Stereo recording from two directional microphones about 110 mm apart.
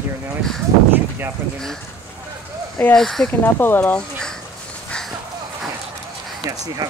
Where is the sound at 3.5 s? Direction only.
20° left (ahead or behind).